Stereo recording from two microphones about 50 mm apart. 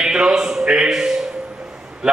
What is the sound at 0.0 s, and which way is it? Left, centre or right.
A man's voice, centre.